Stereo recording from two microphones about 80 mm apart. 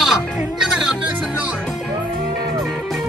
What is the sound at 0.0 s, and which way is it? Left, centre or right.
Music, centre.